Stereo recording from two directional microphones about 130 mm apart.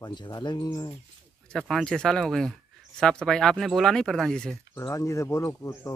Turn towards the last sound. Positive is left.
turn(degrees=25)  # may be behind; listen again after turning